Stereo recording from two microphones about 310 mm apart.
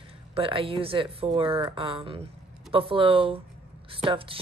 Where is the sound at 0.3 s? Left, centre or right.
Centre.